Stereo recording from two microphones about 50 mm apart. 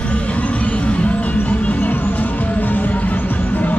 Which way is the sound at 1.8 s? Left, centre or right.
Left.